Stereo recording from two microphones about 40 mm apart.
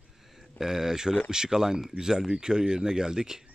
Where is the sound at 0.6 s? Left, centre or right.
Centre.